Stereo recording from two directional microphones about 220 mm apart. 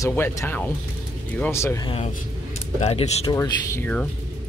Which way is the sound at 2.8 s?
30° left (ahead or behind).